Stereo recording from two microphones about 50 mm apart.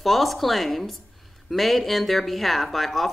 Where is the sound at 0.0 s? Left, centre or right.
Centre.